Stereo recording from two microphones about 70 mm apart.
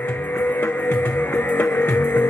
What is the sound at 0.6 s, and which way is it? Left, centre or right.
Music, left.